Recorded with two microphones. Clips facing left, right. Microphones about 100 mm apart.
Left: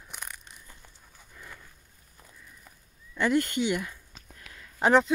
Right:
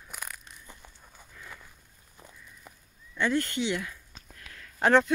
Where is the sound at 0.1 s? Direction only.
5° right (ahead or behind).